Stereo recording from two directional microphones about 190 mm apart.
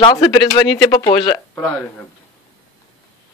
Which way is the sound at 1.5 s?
5° left (ahead or behind).